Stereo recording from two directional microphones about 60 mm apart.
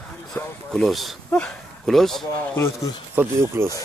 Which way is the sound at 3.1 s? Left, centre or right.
Right.